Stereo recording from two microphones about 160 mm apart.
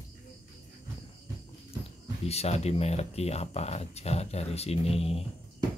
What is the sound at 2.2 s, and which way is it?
Speech, 40° left (ahead or behind).